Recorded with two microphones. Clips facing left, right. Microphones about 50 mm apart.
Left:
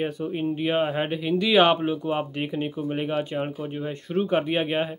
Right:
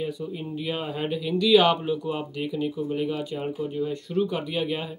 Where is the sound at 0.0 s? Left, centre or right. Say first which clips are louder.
Left 4 dB; left.